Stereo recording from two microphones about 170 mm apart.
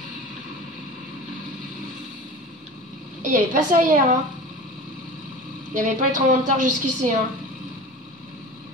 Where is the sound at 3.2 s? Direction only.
50° right (ahead or behind).